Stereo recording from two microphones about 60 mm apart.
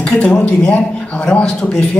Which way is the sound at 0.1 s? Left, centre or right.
Centre.